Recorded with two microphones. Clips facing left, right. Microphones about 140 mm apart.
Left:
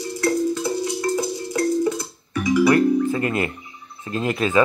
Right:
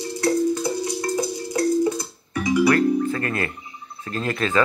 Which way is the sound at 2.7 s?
20° left (ahead or behind).